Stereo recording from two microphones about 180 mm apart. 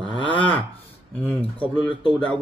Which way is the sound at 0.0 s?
25° left (ahead or behind).